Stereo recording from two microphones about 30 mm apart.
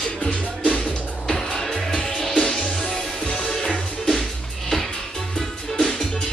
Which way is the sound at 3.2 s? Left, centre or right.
Left.